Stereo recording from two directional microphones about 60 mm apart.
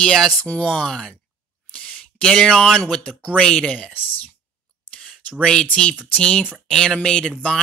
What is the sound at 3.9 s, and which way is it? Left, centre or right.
Speech, left.